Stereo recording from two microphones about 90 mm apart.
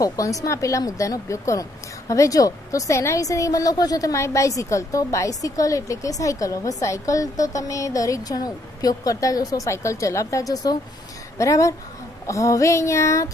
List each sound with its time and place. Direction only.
0.0 s speech: 40° left (ahead or behind)